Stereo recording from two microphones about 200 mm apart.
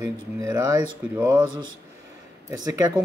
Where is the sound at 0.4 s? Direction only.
15° right (ahead or behind).